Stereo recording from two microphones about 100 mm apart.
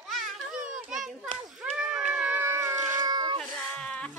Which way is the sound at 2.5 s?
35° right (ahead or behind).